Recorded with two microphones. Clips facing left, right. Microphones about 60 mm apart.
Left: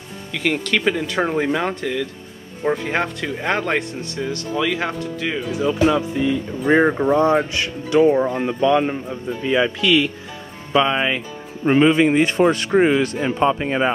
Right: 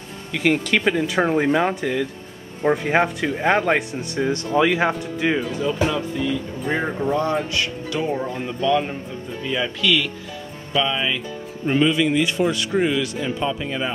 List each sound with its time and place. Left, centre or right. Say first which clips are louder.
0.3 s speech: right 1 dB; centre
4.0 s speech: right 3 dB; right
5.6 s speech: left 4 dB; centre
6.8 s speech: left 5 dB; left
10.7 s speech: left 4 dB; left